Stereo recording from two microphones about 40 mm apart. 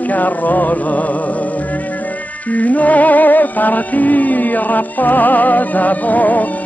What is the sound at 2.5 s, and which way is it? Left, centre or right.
Music, left.